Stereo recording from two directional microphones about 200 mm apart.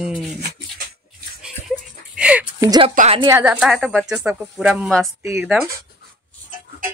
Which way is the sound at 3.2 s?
10° right (ahead or behind).